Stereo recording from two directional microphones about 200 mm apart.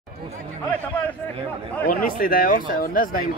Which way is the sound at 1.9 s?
45° left (ahead or behind).